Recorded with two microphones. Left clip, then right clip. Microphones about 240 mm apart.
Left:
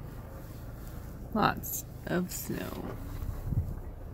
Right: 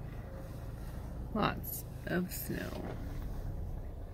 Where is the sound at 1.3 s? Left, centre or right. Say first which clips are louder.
Left 6 dB; left.